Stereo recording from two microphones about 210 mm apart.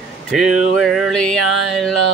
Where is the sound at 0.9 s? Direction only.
Centre (ahead or behind).